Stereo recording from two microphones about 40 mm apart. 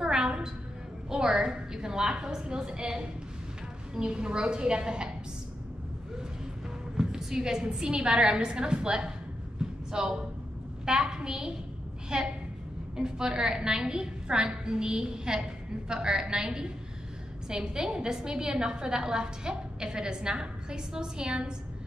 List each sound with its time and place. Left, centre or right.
0.0 s a sound: centre
1.1 s a woman's voice: centre
7.0 s a woman's voice: centre